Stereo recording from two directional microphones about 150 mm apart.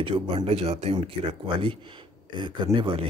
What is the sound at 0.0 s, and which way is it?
A man's voice, 40° right (ahead or behind).